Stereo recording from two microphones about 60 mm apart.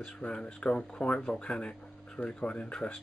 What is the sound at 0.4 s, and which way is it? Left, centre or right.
Speech, centre.